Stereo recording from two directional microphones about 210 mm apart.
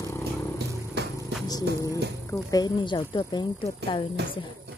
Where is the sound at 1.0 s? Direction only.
50° right (ahead or behind).